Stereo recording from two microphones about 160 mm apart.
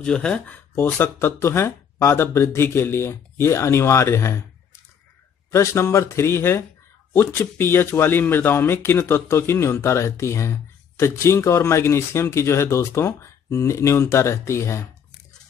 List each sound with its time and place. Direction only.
0.0 s speech: 5° left (ahead or behind)
5.5 s speech: 15° left (ahead or behind)